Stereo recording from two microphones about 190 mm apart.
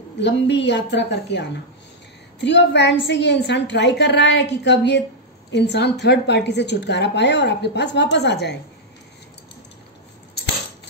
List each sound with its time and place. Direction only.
0.2 s a woman's voice: 65° left (ahead or behind)
2.4 s a woman's voice: 65° left (ahead or behind)